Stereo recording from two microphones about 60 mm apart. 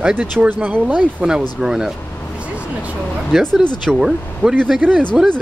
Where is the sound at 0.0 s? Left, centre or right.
Right.